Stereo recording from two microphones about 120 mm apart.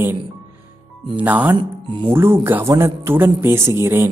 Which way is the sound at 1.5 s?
45° right (ahead or behind).